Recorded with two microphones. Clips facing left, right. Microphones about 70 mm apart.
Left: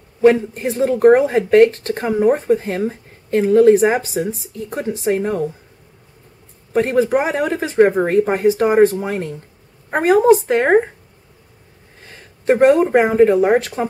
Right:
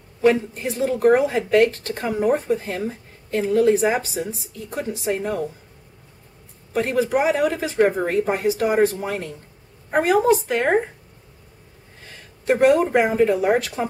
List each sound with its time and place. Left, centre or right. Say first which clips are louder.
0.2 s speech: left 5 dB; left
2.5 s speech: left 6 dB; left
6.7 s speech: left 5 dB; left
12.4 s speech: left 4 dB; left